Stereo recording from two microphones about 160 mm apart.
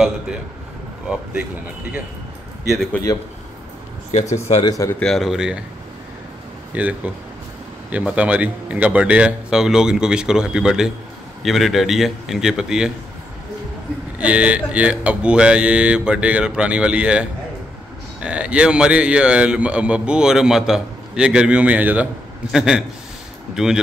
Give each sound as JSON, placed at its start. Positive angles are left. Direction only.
{"t": 2.7, "sound": "speech", "side_deg": 0}
{"t": 4.1, "sound": "speech", "side_deg": 45}
{"t": 4.6, "sound": "speech", "side_deg": 20}
{"t": 4.9, "sound": "speech", "side_deg": 5}
{"t": 6.7, "sound": "speech", "side_deg": -10}
{"t": 14.1, "sound": "a man's voice", "side_deg": -10}